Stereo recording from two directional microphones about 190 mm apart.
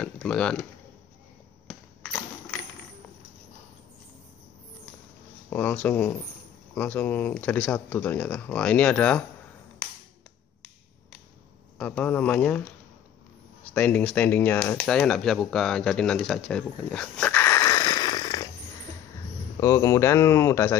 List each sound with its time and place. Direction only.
0.0 s a sound: 5° left (ahead or behind)
1.7 s a sound: 5° left (ahead or behind)
5.5 s speech: 10° left (ahead or behind)
11.8 s speech: 10° left (ahead or behind)
13.7 s speech: 5° left (ahead or behind)
19.6 s speech: 15° left (ahead or behind)